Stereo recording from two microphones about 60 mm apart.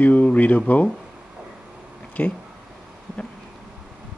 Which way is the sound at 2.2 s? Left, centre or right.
Left.